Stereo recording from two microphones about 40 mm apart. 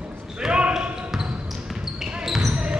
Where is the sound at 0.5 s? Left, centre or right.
Right.